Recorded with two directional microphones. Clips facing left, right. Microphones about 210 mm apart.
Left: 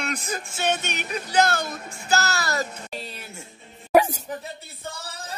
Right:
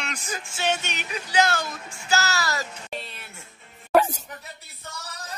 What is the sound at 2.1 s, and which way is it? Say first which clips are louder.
Music: left 1 dB; 55° left (ahead or behind).